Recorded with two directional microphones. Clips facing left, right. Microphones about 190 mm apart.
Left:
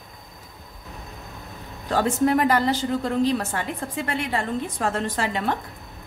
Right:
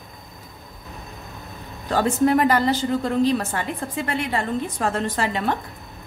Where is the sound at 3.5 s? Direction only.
40° right (ahead or behind).